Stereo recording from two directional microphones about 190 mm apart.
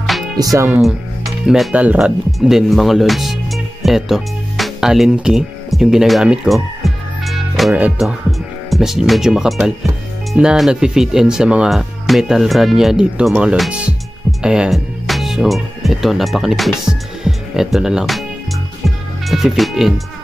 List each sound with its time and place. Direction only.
0.4 s speech: 15° right (ahead or behind)
0.7 s speech: centre (ahead or behind)
19.2 s speech: centre (ahead or behind)